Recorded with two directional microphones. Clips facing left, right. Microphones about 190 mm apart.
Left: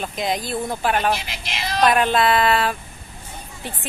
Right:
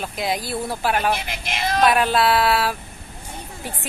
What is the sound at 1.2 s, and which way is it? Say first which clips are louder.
Speech: right 4 dB; 50° right (ahead or behind).